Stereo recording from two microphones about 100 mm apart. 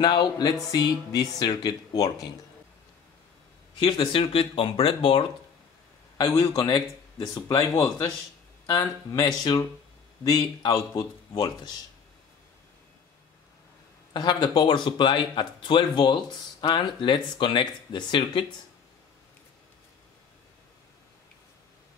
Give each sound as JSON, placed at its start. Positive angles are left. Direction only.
{"t": 0.0, "sound": "speech", "side_deg": 50}
{"t": 4.1, "sound": "speech", "side_deg": 65}
{"t": 6.5, "sound": "speech", "side_deg": 45}
{"t": 14.1, "sound": "speech", "side_deg": 45}